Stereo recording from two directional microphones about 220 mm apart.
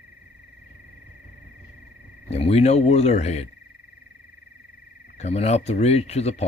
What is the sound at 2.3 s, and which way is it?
Speech, 30° left (ahead or behind).